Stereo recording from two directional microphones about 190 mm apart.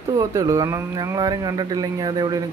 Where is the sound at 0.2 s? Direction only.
20° right (ahead or behind).